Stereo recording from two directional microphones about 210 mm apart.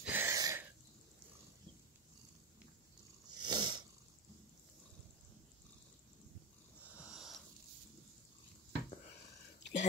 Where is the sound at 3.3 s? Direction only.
20° right (ahead or behind).